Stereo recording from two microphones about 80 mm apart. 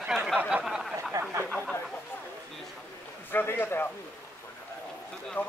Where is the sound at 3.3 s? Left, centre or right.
Left.